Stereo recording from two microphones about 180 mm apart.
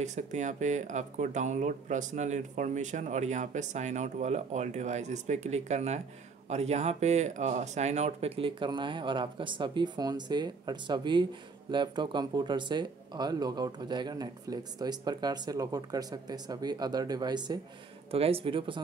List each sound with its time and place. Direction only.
0.0 s speech: 40° right (ahead or behind)